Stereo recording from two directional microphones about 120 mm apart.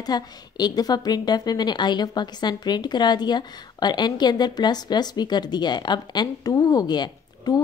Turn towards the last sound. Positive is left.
turn(degrees=35)  # may be behind; listen again after turning